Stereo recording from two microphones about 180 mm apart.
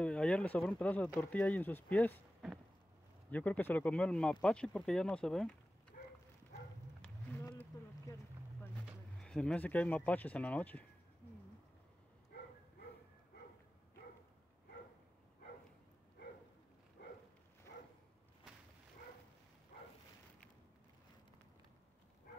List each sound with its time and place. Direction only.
0.0 s speech: 5° left (ahead or behind)
3.3 s speech: 10° left (ahead or behind)
6.0 s livestock: 50° left (ahead or behind)
7.0 s a sound: 10° left (ahead or behind)
9.2 s speech: 5° left (ahead or behind)
17.0 s a sound: 75° left (ahead or behind)